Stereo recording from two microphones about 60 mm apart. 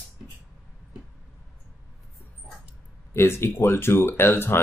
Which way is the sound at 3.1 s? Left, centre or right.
Left.